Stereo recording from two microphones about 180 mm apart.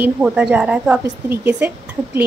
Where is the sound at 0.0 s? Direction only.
5° right (ahead or behind).